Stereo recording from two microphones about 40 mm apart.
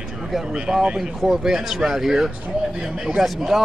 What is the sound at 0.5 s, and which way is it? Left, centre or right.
A man's voice, right.